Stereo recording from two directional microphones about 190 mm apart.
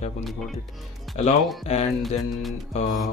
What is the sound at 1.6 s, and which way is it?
Speech, 35° left (ahead or behind).